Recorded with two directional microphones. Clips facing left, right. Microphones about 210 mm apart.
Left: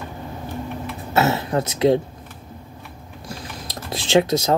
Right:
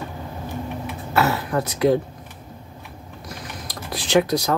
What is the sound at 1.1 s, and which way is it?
Speech, 25° left (ahead or behind).